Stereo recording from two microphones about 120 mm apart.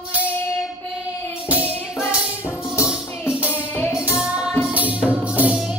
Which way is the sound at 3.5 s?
15° left (ahead or behind).